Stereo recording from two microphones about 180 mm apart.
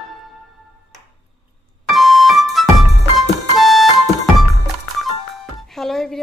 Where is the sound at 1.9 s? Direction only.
Centre (ahead or behind).